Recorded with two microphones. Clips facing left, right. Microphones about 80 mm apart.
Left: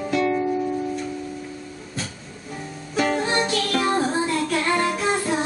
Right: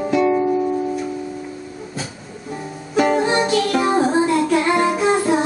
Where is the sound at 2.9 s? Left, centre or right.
Centre.